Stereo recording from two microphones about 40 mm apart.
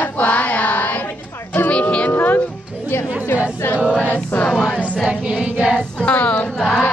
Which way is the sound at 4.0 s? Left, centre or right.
Left.